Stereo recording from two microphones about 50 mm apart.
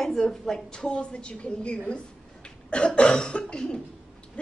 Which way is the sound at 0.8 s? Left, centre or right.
Left.